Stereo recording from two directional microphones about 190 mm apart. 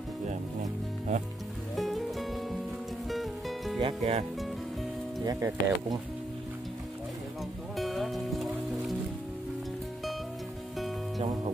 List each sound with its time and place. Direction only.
0.3 s music: 40° right (ahead or behind)
1.8 s music: centre (ahead or behind)
3.8 s speech: 35° right (ahead or behind)
5.2 s speech: 20° right (ahead or behind)
7.7 s music: centre (ahead or behind)